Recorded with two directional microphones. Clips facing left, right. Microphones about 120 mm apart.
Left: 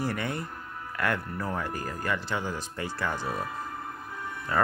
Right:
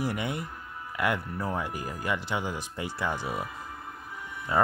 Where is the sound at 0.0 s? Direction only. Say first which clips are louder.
Even; 15° right (ahead or behind).